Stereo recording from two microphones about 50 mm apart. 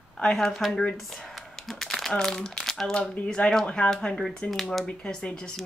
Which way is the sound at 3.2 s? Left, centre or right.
Centre.